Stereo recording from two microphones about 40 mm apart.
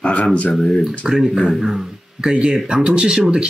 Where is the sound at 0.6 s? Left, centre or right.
Centre.